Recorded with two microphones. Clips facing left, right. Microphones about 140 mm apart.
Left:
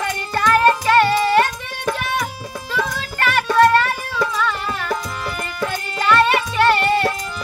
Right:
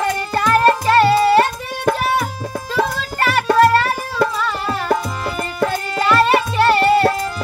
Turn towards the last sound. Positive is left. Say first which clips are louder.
# right 3 dB
turn(degrees=-35)  # may be behind; listen again after turning